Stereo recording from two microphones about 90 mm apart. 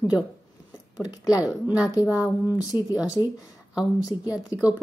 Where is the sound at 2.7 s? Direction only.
40° left (ahead or behind).